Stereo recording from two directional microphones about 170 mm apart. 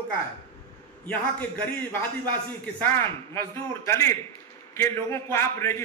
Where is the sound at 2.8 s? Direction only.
15° left (ahead or behind).